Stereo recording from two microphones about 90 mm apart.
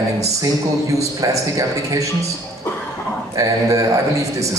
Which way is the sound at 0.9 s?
35° right (ahead or behind).